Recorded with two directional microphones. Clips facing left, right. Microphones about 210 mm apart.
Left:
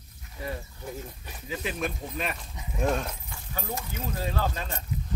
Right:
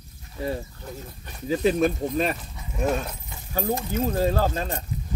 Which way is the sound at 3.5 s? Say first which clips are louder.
Right 10 dB; 35° right (ahead or behind).